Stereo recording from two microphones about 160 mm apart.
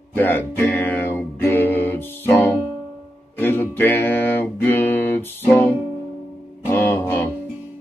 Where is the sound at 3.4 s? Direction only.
15° left (ahead or behind).